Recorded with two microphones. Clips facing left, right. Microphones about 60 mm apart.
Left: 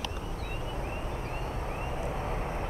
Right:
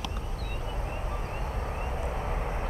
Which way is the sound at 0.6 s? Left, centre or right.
Centre.